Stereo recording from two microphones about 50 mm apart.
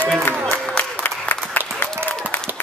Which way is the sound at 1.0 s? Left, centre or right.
Left.